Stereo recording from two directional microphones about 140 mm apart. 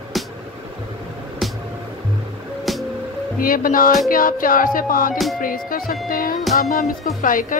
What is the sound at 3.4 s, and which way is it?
A woman's voice, 90° left.